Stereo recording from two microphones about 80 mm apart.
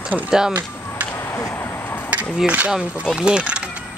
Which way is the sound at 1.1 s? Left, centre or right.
Left.